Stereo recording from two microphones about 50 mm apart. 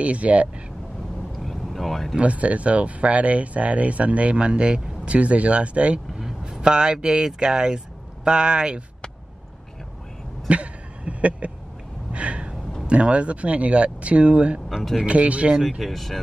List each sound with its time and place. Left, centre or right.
0.0 s speech: right
1.4 s vehicle: centre
2.1 s speech: right
10.5 s a sound: right
12.1 s gasp: right
12.8 s speech: right
15.8 s speech: centre